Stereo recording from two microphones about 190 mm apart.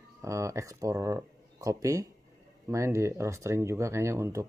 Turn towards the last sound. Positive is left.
turn(degrees=-15)  # may be behind; listen again after turning